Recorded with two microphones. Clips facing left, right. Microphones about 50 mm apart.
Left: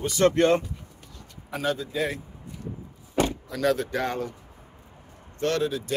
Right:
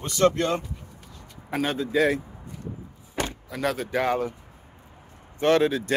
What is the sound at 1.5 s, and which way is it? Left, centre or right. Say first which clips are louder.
Speech: right 1 dB; right.